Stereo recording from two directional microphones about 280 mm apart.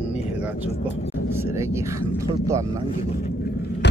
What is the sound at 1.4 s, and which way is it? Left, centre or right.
Speech, centre.